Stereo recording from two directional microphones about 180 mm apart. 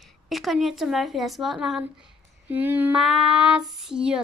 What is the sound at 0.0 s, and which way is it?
A woman's voice, centre (ahead or behind).